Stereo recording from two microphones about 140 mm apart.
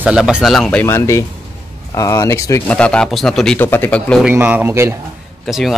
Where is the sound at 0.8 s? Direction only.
20° left (ahead or behind).